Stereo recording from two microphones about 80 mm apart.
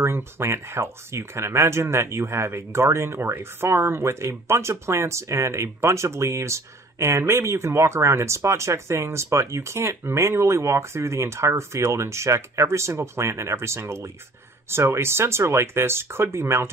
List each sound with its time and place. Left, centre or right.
0.0 s speech: right